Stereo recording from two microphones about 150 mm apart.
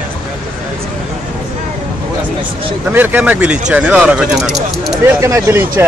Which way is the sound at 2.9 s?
10° right (ahead or behind).